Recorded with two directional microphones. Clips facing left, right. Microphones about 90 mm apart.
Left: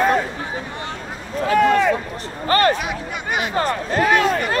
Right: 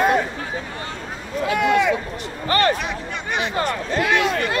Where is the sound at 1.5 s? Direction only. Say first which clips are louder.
Left 3 dB; 40° left (ahead or behind).